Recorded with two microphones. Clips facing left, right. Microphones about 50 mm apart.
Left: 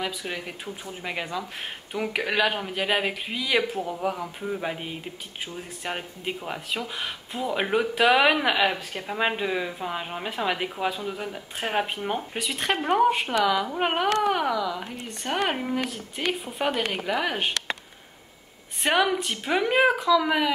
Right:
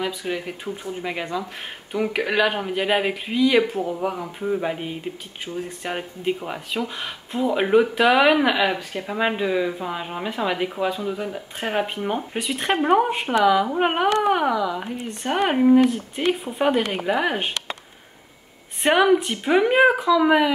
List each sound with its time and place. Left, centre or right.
0.0 s speech: centre
14.0 s speech: right
18.8 s speech: centre